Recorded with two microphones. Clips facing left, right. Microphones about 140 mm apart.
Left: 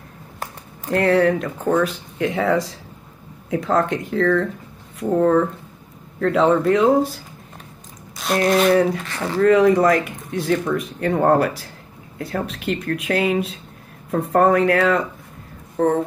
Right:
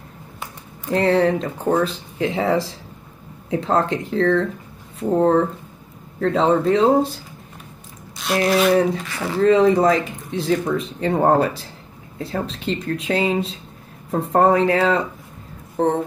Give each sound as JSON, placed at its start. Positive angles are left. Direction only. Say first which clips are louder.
{"t": 0.9, "sound": "speech", "louder": "left 1 dB", "side_deg": -25}
{"t": 8.2, "sound": "speech", "louder": "left 1 dB", "side_deg": 0}
{"t": 9.4, "sound": "speech", "louder": "even", "side_deg": -25}